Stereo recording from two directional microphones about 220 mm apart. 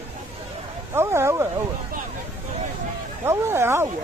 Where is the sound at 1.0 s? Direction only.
10° right (ahead or behind).